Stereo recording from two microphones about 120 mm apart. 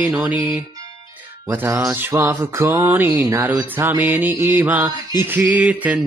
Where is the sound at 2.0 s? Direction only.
20° right (ahead or behind).